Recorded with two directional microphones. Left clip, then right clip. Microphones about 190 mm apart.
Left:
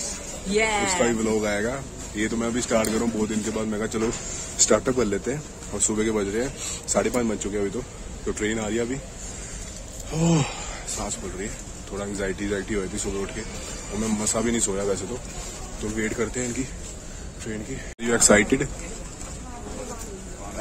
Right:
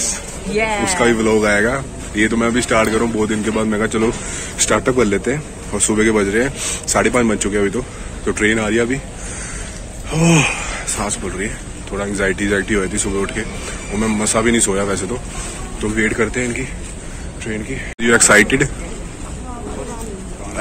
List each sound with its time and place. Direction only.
0.6 s speech: 70° left (ahead or behind)
1.2 s speech: 5° left (ahead or behind)
10.1 s speech: 10° left (ahead or behind)
18.0 s speech: 10° left (ahead or behind)